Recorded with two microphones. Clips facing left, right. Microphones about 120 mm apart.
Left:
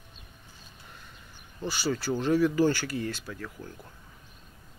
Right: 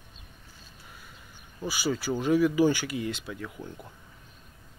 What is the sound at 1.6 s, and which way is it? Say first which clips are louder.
Speech: even; 10° right (ahead or behind).